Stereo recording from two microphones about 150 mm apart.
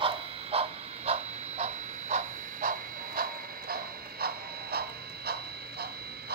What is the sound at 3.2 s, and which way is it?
Printer, 75° right (ahead or behind).